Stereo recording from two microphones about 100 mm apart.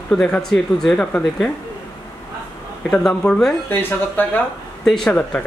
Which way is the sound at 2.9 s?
5° left (ahead or behind).